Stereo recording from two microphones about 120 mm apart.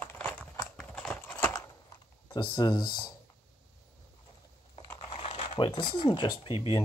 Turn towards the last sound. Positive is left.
turn(degrees=45)  # may be behind; listen again after turning